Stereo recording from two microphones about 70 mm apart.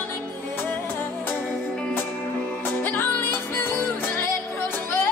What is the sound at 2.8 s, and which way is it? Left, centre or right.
Music, left.